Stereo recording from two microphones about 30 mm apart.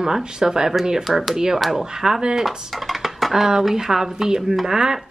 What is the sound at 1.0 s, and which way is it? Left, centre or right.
Speech, centre.